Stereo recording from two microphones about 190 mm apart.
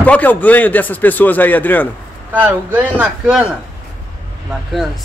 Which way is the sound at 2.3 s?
10° right (ahead or behind).